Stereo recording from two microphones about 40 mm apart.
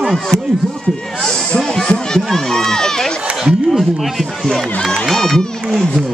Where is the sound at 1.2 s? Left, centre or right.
Centre.